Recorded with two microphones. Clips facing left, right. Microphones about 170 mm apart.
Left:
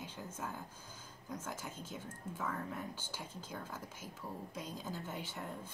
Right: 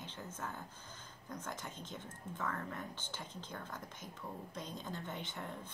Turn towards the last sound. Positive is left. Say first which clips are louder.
# left 1 dB
turn(degrees=5)  # may be behind; listen again after turning